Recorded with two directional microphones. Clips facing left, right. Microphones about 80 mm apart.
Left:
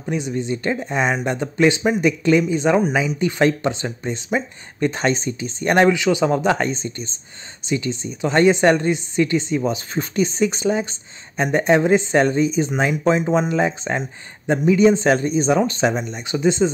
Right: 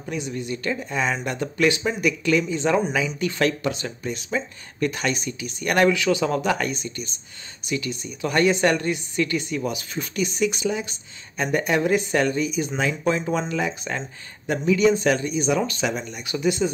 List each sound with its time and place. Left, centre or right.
0.1 s speech: left